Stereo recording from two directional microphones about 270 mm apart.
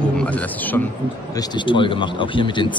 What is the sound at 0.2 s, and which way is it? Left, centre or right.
Speech, centre.